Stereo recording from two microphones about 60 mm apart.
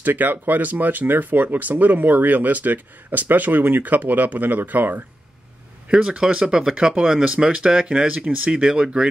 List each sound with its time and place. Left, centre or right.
0.0 s speech: right
5.9 s speech: centre